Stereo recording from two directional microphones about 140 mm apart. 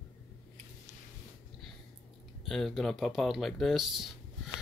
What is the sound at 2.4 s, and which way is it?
Speech, centre (ahead or behind).